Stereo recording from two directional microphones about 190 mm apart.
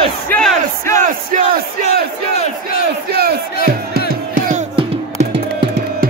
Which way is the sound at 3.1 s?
55° right (ahead or behind).